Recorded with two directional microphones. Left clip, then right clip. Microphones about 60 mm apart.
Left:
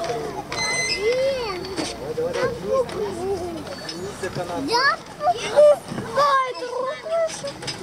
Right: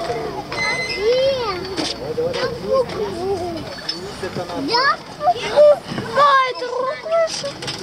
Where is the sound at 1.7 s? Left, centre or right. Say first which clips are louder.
Right 4 dB; centre.